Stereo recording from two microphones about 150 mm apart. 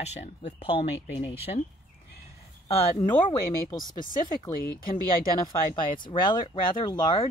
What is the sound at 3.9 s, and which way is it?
Speech, 65° left (ahead or behind).